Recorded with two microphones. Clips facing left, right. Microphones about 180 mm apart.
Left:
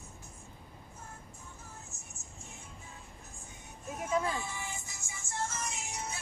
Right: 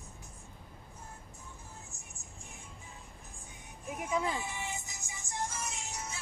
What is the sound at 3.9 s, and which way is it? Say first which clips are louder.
Music: left 1 dB; 15° right (ahead or behind).